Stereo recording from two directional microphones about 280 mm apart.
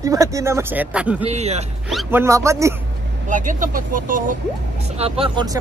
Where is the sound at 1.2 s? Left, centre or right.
Right.